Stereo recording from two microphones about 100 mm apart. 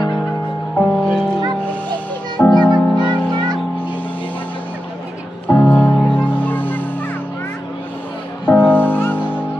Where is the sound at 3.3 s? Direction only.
45° right (ahead or behind).